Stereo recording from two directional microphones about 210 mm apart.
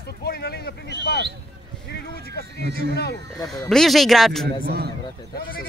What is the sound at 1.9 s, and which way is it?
Speech, 50° left (ahead or behind).